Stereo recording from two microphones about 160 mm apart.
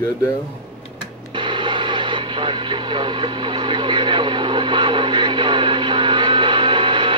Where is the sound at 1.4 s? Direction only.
30° right (ahead or behind).